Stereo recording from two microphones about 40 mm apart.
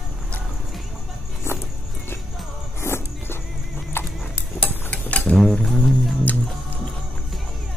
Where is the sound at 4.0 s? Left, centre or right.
Left.